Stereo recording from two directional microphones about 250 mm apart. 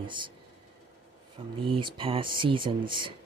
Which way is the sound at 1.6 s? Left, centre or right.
Centre.